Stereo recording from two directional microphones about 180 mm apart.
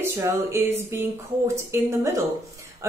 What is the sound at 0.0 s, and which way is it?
A woman's voice, 15° right (ahead or behind).